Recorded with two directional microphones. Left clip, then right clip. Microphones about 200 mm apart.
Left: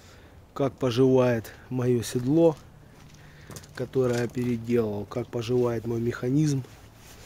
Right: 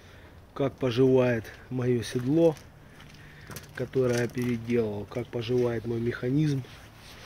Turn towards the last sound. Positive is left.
turn(degrees=20)  # may be behind; listen again after turning